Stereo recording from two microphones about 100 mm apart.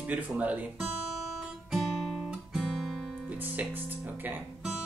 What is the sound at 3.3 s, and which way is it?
Speech, 15° right (ahead or behind).